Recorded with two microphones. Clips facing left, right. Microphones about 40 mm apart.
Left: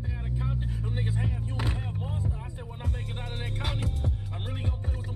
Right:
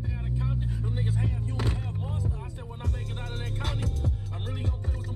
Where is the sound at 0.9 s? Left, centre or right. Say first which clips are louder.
Even; centre.